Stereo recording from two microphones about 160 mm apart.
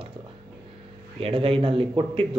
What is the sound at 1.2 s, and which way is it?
Speech, 35° right (ahead or behind).